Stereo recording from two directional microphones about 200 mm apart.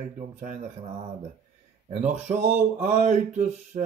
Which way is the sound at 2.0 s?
35° right (ahead or behind).